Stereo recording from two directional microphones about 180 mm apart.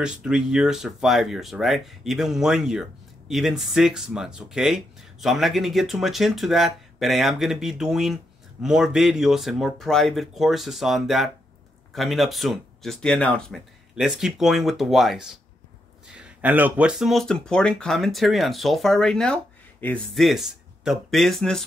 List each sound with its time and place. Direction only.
0.0 s speech: 5° right (ahead or behind)